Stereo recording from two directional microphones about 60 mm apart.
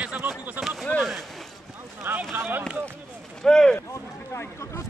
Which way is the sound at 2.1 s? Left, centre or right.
Right.